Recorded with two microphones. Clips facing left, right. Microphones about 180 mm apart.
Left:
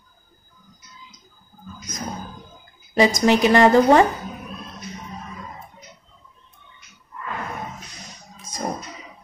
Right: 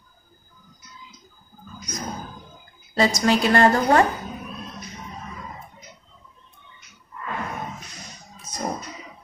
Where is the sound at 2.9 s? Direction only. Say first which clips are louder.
Left 3 dB; 20° left (ahead or behind).